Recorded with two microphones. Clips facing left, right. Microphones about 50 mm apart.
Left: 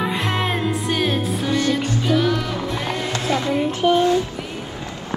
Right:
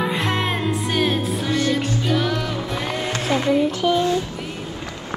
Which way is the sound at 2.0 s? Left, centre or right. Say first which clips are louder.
Left 4 dB; centre.